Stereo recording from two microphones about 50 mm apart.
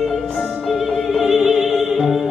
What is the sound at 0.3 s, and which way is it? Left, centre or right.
Opera, centre.